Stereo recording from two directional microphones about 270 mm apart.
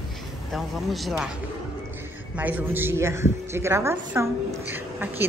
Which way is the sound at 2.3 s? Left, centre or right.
Centre.